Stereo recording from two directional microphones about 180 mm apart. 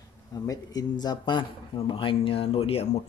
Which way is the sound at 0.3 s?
20° left (ahead or behind).